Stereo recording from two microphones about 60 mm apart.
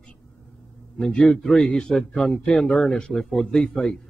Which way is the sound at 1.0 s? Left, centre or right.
Centre.